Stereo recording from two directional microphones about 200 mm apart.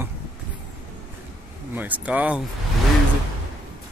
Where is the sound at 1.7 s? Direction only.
10° right (ahead or behind).